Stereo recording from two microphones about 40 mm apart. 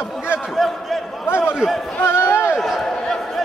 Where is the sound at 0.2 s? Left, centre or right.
Right.